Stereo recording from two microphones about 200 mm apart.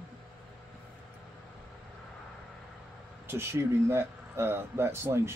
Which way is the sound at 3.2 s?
10° right (ahead or behind).